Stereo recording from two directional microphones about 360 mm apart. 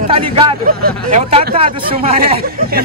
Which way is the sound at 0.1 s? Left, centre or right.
Centre.